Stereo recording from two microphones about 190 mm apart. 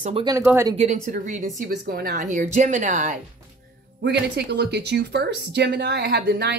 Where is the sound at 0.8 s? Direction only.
40° right (ahead or behind).